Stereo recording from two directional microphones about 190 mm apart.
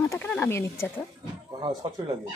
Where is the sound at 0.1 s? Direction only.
10° left (ahead or behind).